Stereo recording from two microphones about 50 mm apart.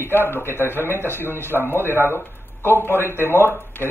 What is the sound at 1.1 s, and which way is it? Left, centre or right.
Speech, right.